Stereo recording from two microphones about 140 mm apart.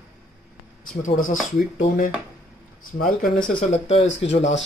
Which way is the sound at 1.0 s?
65° left (ahead or behind).